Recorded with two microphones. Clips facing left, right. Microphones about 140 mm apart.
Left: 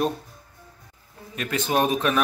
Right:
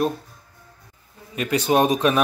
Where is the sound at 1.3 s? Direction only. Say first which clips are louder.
Right 5 dB; 10° right (ahead or behind).